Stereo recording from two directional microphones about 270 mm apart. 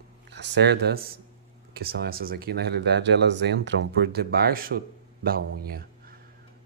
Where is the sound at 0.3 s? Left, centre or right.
Right.